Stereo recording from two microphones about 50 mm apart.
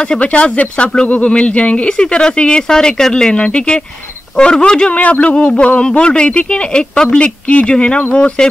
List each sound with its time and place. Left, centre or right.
0.0 s speech: left